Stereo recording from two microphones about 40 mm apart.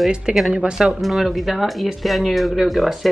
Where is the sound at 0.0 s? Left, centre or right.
Centre.